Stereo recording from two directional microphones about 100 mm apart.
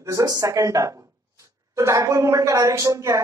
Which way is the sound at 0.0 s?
30° right (ahead or behind).